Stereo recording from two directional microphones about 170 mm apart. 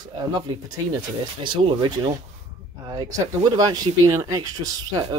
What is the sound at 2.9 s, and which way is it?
Speech, 25° right (ahead or behind).